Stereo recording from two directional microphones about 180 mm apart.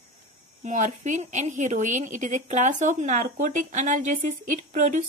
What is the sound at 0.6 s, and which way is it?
A woman's voice, 45° right (ahead or behind).